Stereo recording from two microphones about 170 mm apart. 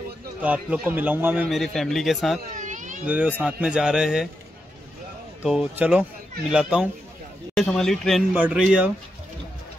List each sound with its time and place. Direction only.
0.4 s a man's voice: 10° right (ahead or behind)
1.5 s speech: centre (ahead or behind)
2.5 s baby cry: 50° right (ahead or behind)
3.1 s a man's voice: 10° right (ahead or behind)
5.4 s a man's voice: 5° right (ahead or behind)